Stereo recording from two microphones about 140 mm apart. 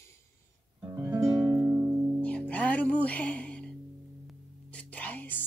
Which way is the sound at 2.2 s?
10° left (ahead or behind).